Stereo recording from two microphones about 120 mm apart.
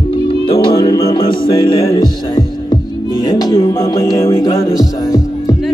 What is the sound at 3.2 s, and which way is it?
Music, 30° left (ahead or behind).